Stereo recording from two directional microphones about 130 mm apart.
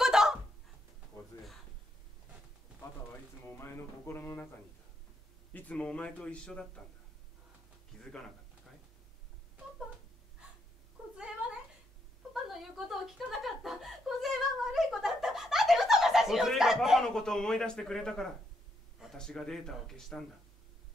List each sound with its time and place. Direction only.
0.0 s a sound: 5° right (ahead or behind)
3.1 s music: 15° left (ahead or behind)
5.5 s a man's voice: 10° left (ahead or behind)
8.0 s a man's voice: 5° left (ahead or behind)
11.1 s cat: 5° right (ahead or behind)
12.4 s chuckle: centre (ahead or behind)
18.9 s a man's voice: 5° left (ahead or behind)